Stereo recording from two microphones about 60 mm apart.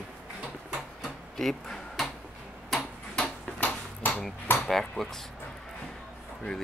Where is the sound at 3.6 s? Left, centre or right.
Left.